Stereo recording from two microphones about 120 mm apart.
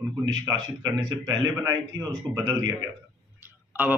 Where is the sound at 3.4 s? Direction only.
15° right (ahead or behind).